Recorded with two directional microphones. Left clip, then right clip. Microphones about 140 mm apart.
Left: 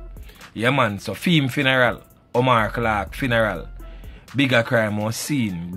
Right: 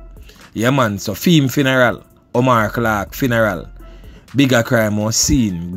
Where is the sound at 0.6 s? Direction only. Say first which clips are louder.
Right 3 dB; 50° right (ahead or behind).